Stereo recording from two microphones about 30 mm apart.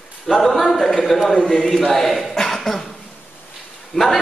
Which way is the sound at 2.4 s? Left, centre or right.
Centre.